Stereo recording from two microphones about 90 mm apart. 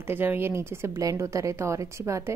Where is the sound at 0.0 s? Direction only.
25° right (ahead or behind).